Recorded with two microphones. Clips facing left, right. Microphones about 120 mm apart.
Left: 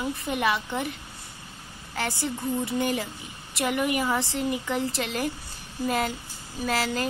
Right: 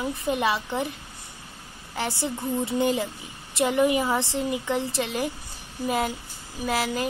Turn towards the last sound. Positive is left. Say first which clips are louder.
# right 1 dB
turn(degrees=-15)  # may be behind; listen again after turning